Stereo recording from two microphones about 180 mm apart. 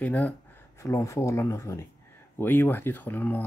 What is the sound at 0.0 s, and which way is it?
Speech, 10° left (ahead or behind).